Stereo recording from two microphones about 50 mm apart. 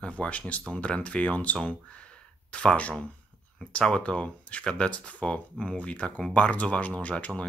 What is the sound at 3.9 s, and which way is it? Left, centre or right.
Speech, centre.